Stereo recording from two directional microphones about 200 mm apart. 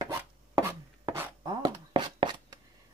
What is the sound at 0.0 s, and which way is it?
Chopping, 15° right (ahead or behind).